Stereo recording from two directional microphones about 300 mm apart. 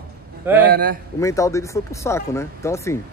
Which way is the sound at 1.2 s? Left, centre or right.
Centre.